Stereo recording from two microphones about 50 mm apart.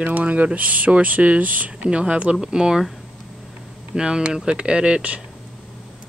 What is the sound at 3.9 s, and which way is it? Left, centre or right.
Speech, centre.